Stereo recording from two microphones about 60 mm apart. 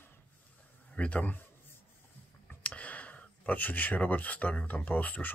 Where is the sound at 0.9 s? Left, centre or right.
Left.